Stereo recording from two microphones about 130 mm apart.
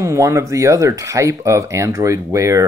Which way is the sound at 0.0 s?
25° right (ahead or behind).